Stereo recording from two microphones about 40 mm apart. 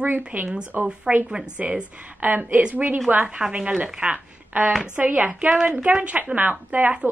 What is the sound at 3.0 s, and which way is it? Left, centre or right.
Speech, right.